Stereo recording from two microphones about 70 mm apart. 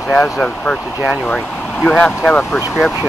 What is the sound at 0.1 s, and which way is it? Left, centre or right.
Speech, centre.